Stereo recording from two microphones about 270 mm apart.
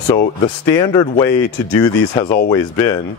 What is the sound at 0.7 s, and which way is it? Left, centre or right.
Speech, centre.